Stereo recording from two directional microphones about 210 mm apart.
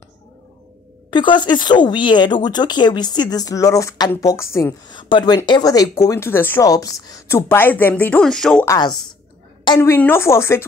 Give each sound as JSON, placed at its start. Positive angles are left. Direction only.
{"t": 1.1, "sound": "speech", "side_deg": 20}
{"t": 8.6, "sound": "speech", "side_deg": 20}